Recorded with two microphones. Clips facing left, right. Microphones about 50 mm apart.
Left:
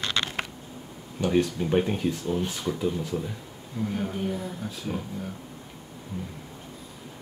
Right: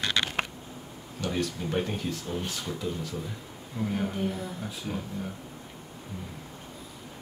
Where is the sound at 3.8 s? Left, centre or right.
Centre.